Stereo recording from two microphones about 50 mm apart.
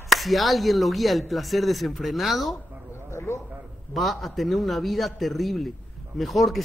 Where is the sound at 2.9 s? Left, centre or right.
Left.